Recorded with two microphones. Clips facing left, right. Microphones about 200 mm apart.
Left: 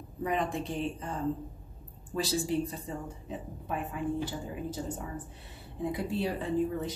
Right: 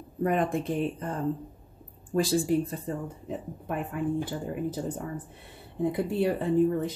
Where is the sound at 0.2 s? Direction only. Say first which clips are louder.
Right 5 dB; 55° right (ahead or behind).